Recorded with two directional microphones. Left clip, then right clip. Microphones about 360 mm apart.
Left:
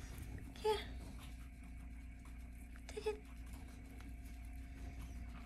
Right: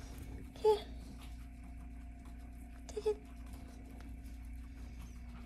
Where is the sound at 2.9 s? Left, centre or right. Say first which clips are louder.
Right 6 dB; centre.